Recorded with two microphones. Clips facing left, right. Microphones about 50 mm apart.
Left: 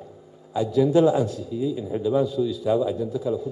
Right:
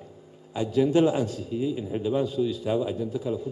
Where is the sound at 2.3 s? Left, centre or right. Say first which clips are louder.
Left 3 dB; right.